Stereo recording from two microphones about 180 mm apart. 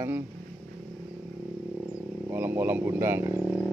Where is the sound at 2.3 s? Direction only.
10° right (ahead or behind).